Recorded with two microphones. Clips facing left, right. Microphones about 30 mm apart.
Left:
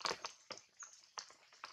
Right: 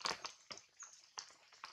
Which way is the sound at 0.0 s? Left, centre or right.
Centre.